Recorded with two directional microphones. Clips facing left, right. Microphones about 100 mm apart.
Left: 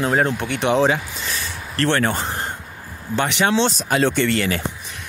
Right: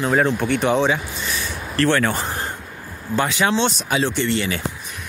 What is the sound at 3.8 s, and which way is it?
Speech, 50° left (ahead or behind).